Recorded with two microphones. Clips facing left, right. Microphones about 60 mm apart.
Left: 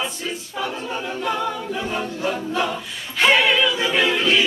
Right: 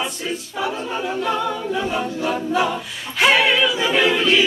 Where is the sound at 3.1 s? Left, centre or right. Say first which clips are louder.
Right 1 dB; centre.